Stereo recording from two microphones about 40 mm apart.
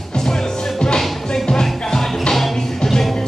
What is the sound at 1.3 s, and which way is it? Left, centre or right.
Music, centre.